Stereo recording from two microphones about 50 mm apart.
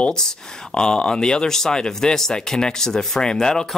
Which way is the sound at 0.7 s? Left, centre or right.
Centre.